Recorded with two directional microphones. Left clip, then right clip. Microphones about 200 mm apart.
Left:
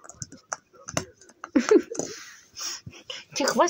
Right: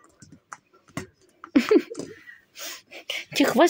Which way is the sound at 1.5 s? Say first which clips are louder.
Even; 35° right (ahead or behind).